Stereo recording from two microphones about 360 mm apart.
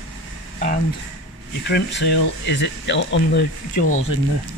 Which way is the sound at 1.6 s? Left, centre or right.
Left.